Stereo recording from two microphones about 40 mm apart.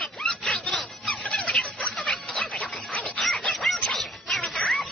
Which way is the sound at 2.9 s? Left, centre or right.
Left.